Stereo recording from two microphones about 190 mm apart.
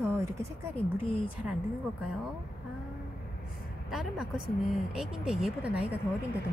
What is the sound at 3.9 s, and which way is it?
Speech, centre (ahead or behind).